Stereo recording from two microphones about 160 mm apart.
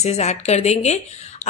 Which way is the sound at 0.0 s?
45° left (ahead or behind).